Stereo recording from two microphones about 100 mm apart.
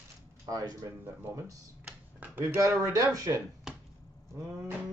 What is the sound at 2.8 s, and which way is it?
Speech, 35° right (ahead or behind).